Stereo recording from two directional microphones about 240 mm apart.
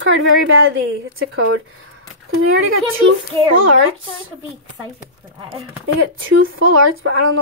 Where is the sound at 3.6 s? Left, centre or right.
Right.